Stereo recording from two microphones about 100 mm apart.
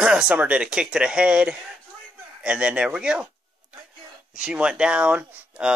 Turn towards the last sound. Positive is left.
turn(degrees=-10)  # may be behind; listen again after turning